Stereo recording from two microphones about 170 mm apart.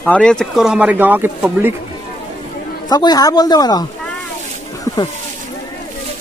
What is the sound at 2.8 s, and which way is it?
Speech, 25° left (ahead or behind).